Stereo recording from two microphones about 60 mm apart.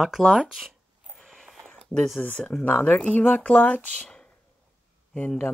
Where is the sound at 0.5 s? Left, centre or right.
Centre.